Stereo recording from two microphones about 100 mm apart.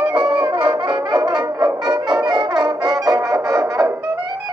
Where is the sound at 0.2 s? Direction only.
15° right (ahead or behind).